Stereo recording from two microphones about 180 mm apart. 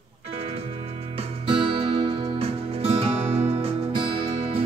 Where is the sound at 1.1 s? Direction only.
30° right (ahead or behind).